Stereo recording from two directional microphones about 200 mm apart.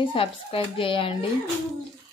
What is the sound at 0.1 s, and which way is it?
A woman's voice, 25° left (ahead or behind).